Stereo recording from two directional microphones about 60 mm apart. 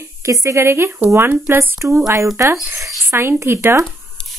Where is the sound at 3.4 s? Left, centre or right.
Right.